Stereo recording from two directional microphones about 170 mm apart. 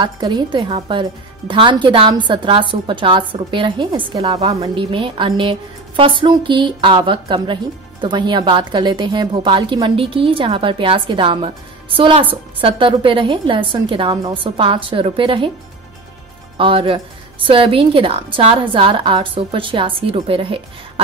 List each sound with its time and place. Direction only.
0.0 s a woman's voice: 25° right (ahead or behind)
16.5 s a woman's voice: 30° right (ahead or behind)